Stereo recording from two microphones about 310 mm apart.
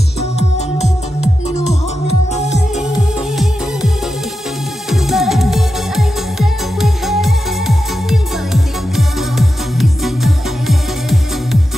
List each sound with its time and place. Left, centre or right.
0.2 s music: left
4.8 s music: centre